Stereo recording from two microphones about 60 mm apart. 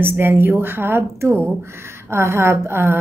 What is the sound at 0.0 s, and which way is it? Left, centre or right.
A woman's voice, right.